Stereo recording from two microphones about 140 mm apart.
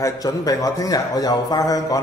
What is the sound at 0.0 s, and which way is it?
A man's voice, 25° left (ahead or behind).